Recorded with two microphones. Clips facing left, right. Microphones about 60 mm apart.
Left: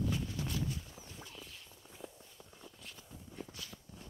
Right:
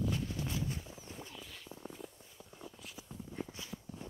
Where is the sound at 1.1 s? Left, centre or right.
Right.